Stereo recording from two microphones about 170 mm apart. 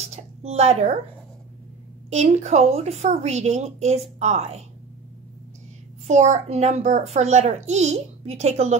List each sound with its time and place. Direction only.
0.1 s a sound: 40° right (ahead or behind)
2.0 s a child's voice: 40° right (ahead or behind)
6.0 s a child's voice: 45° right (ahead or behind)